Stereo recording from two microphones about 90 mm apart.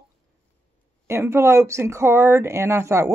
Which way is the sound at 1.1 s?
30° right (ahead or behind).